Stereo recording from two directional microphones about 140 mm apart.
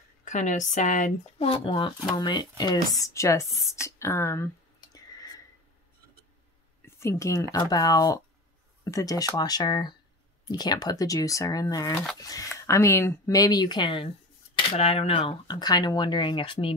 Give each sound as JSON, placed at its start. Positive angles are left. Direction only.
{"t": 0.2, "sound": "speech", "side_deg": 60}
{"t": 1.4, "sound": "speech", "side_deg": 40}
{"t": 7.0, "sound": "speech", "side_deg": 20}
{"t": 14.5, "sound": "speech", "side_deg": 45}
{"t": 15.5, "sound": "speech", "side_deg": 30}